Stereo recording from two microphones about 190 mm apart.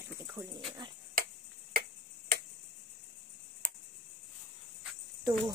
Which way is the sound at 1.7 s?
55° right (ahead or behind).